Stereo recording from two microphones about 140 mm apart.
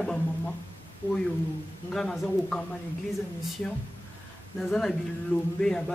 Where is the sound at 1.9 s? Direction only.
5° left (ahead or behind).